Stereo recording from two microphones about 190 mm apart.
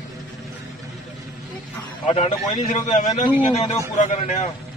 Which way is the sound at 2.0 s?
35° left (ahead or behind).